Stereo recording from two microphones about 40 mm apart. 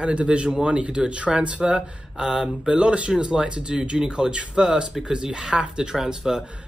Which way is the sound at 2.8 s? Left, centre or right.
Right.